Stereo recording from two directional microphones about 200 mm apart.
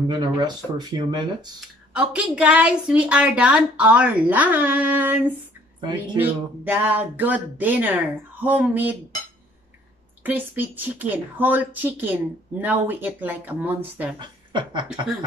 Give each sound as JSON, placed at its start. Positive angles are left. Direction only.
{"t": 0.1, "sound": "speech", "side_deg": -20}
{"t": 2.0, "sound": "speech", "side_deg": -5}
{"t": 10.2, "sound": "speech", "side_deg": -10}
{"t": 14.1, "sound": "a woman's voice", "side_deg": -20}